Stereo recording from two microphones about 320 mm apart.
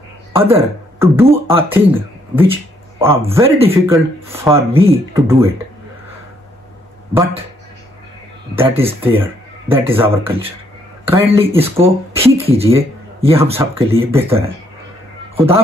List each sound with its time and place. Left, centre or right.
0.3 s speech: centre
8.5 s a man's voice: centre